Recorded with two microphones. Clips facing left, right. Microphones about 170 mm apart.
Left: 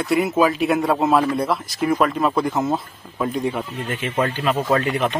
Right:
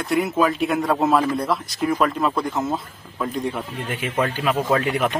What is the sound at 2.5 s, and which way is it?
Speech, 20° left (ahead or behind).